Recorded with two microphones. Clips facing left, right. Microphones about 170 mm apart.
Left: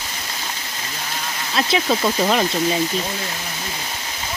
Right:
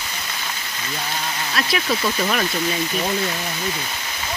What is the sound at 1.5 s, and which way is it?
Speech, 25° left (ahead or behind).